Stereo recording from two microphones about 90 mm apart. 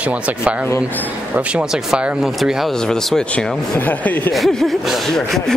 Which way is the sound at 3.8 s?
20° left (ahead or behind).